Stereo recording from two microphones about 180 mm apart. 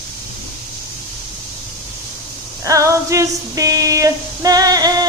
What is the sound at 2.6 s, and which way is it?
Female singing, 20° right (ahead or behind).